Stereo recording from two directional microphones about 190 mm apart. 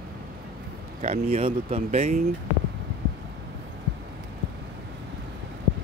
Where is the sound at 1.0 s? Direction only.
35° right (ahead or behind).